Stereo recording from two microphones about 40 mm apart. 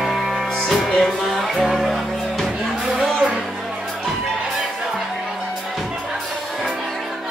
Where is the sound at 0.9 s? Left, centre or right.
Centre.